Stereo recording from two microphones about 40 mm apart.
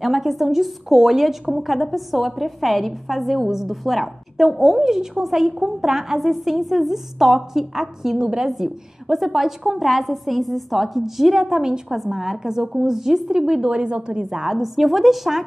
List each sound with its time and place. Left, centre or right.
0.0 s a woman's voice: centre; by 14.5 s right
14.5 s a woman's voice: centre